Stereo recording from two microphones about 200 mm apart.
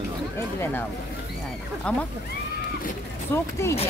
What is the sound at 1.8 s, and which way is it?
Speech, 5° left (ahead or behind).